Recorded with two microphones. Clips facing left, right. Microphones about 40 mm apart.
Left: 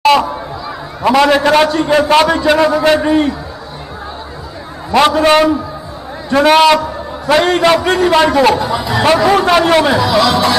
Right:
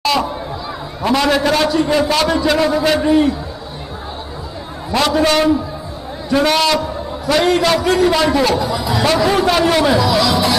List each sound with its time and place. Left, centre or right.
0.0 s chatter: left
1.0 s a man's voice: left
4.9 s a man's voice: left